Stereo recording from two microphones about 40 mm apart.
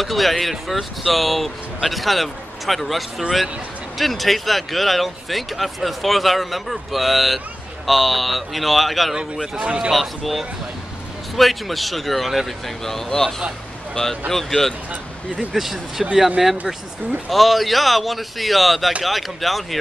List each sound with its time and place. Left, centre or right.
0.0 s speech: centre
9.1 s a man's voice: centre
9.9 s speech: centre
14.3 s speech: centre
15.3 s speech: centre
17.3 s speech: centre